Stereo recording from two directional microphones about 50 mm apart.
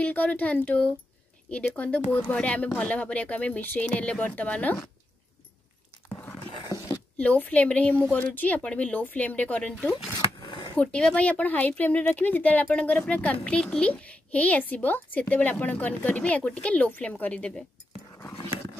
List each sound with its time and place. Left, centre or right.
0.0 s a child's voice: left
7.2 s a child's voice: left